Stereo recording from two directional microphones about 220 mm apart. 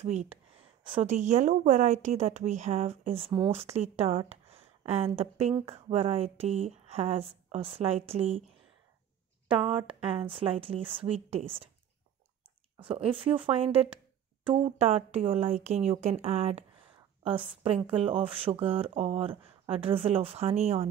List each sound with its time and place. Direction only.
0.0 s speech: 30° right (ahead or behind)
9.5 s speech: 25° right (ahead or behind)
12.7 s speech: 25° right (ahead or behind)
17.6 s speech: 25° right (ahead or behind)